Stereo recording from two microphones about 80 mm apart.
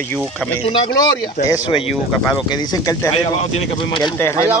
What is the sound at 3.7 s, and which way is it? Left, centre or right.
Speech, left.